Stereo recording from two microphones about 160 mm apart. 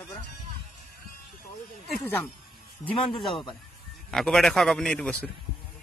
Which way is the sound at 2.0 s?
10° left (ahead or behind).